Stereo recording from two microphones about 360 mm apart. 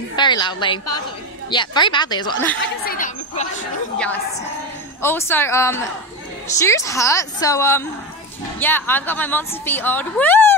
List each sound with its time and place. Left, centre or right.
0.1 s a woman's voice: centre
2.6 s speech: left
5.0 s a woman's voice: centre